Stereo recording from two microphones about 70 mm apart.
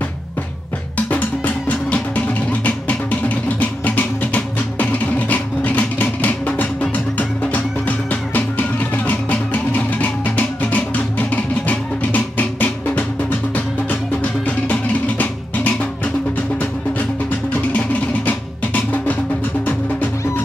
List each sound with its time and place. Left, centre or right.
0.9 s music: left
14.4 s music: left
17.7 s music: left